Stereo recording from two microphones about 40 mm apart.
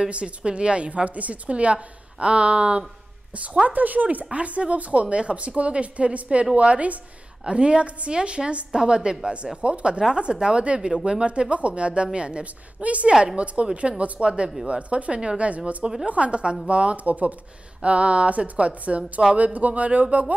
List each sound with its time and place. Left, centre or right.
0.1 s a woman's voice: right
3.6 s a woman's voice: right
12.8 s a woman's voice: right